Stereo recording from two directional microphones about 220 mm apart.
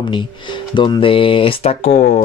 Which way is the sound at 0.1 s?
20° left (ahead or behind).